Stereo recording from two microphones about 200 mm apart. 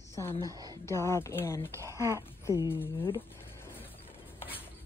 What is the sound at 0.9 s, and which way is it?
Speech, 15° left (ahead or behind).